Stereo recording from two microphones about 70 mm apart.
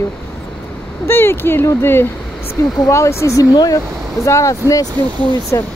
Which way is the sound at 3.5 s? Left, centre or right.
Left.